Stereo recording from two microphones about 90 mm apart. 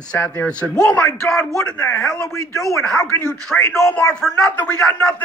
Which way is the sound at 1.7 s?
35° left (ahead or behind).